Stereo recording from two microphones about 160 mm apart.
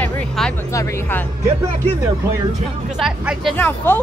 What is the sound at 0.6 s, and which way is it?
Speech, 20° left (ahead or behind).